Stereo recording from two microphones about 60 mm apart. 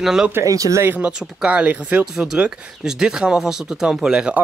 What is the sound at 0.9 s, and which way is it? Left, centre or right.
Speech, right.